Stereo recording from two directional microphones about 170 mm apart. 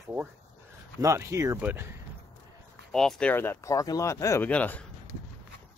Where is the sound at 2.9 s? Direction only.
5° left (ahead or behind).